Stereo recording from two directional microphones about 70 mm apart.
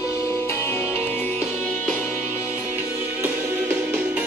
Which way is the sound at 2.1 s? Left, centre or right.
Left.